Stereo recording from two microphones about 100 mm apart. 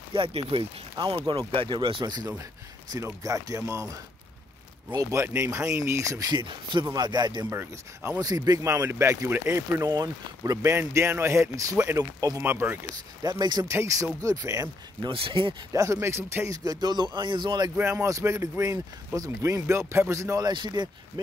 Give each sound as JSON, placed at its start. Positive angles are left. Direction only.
{"t": 0.3, "sound": "speech", "side_deg": -75}
{"t": 0.9, "sound": "speech", "side_deg": -50}
{"t": 3.0, "sound": "speech", "side_deg": -35}
{"t": 6.3, "sound": "speech", "side_deg": -50}
{"t": 7.4, "sound": "speech", "side_deg": -25}
{"t": 8.2, "sound": "speech", "side_deg": -40}
{"t": 12.4, "sound": "speech", "side_deg": -20}
{"t": 13.2, "sound": "speech", "side_deg": -45}
{"t": 13.7, "sound": "speech", "side_deg": -30}
{"t": 15.0, "sound": "speech", "side_deg": -60}
{"t": 15.7, "sound": "speech", "side_deg": -30}
{"t": 16.6, "sound": "speech", "side_deg": -45}
{"t": 17.7, "sound": "speech", "side_deg": -25}
{"t": 20.5, "sound": "speech", "side_deg": -45}